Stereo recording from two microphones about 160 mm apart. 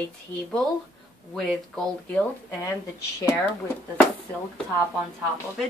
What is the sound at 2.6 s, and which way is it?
Speech, 15° left (ahead or behind).